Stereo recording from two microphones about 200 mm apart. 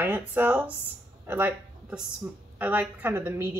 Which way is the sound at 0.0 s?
10° right (ahead or behind).